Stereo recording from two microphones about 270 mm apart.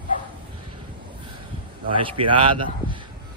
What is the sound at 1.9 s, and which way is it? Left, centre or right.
A man's voice, centre.